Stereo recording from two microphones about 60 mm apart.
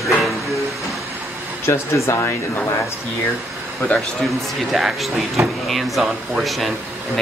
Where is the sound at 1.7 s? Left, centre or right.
Left.